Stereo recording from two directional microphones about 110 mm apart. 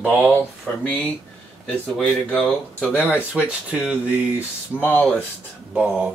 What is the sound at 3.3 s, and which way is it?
Speech, 10° right (ahead or behind).